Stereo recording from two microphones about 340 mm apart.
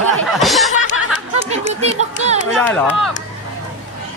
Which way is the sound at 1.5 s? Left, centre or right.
Centre.